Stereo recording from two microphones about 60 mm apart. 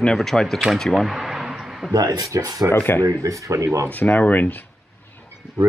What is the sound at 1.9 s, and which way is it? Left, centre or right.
Speech, right.